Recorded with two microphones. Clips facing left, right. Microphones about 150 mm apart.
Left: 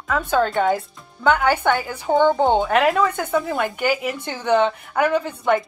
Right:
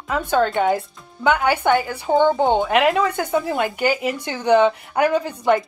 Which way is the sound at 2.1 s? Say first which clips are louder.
Right 1 dB; centre (ahead or behind).